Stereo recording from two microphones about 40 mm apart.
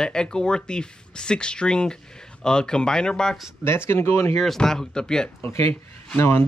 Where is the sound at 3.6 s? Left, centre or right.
Left.